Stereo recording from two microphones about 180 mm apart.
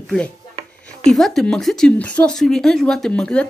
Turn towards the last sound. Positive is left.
turn(degrees=5)  # may be behind; listen again after turning